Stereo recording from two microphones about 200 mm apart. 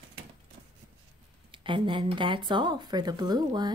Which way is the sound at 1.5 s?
25° right (ahead or behind).